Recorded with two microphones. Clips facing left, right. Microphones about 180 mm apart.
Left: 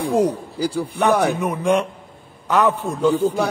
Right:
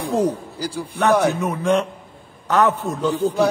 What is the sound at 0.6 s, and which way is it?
Speech, 60° left (ahead or behind).